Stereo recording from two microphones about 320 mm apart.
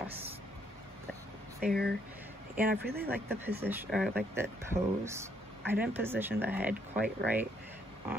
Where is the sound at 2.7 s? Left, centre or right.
Right.